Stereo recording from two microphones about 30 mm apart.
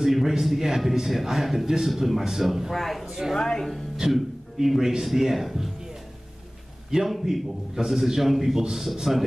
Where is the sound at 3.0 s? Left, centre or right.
Centre.